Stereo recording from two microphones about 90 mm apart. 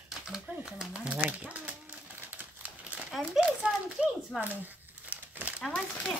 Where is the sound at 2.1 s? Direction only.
15° right (ahead or behind).